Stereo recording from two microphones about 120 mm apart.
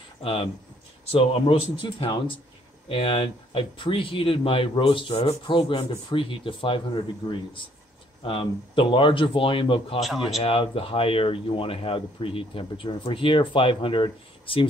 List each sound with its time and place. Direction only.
0.2 s speech: 50° left (ahead or behind)
9.9 s a man's voice: centre (ahead or behind)
10.4 s speech: 50° left (ahead or behind)